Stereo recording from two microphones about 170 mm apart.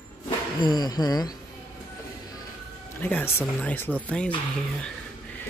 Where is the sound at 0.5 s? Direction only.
25° left (ahead or behind).